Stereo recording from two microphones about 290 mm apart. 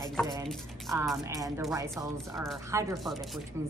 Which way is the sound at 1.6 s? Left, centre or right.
Centre.